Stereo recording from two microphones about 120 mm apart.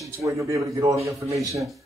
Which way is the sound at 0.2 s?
25° right (ahead or behind).